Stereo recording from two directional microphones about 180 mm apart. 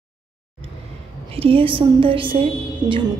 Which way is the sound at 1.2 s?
30° right (ahead or behind).